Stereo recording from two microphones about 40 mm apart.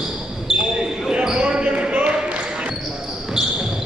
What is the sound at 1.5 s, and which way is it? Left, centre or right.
Basketball bounce, right.